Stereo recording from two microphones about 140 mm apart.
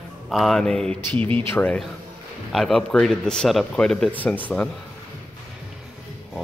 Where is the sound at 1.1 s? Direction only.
35° right (ahead or behind).